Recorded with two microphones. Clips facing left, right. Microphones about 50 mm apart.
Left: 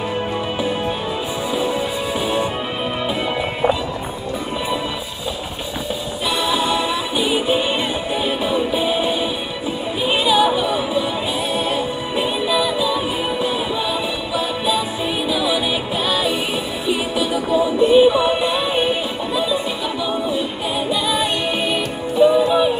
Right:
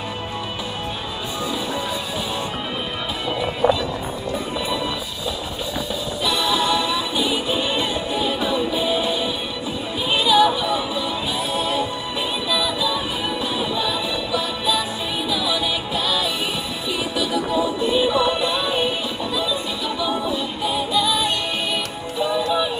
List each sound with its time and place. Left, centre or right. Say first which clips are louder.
6.2 s music: left 1 dB; centre